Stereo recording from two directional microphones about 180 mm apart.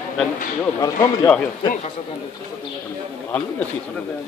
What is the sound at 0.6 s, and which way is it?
Speech, 20° left (ahead or behind).